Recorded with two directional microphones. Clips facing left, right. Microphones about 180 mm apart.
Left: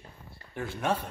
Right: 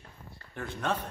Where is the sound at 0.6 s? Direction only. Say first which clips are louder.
Left 2 dB; 10° left (ahead or behind).